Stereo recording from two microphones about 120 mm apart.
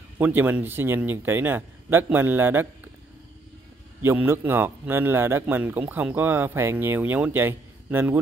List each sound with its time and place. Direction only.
0.2 s a man's voice: 15° right (ahead or behind)
4.0 s a man's voice: 15° right (ahead or behind)